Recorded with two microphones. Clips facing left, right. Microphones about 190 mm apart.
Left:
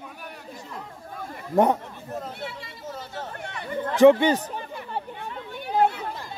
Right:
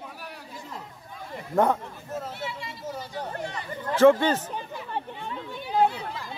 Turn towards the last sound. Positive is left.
turn(degrees=60)  # may be behind; listen again after turning